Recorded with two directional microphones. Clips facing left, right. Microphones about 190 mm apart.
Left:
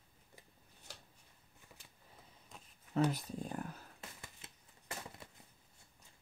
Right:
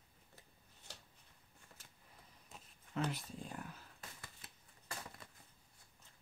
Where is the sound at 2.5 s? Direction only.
5° right (ahead or behind).